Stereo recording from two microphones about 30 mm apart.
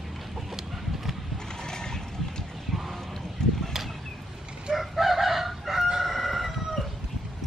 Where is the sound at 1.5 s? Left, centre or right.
Left.